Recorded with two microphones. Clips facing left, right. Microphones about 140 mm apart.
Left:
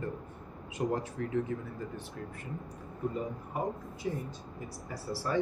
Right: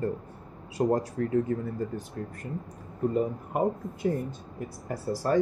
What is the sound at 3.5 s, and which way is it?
Speech, 60° right (ahead or behind).